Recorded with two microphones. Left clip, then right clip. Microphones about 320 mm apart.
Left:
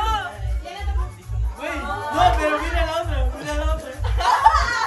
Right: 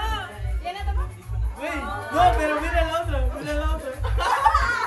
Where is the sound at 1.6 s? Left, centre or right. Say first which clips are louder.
Left 2 dB; centre.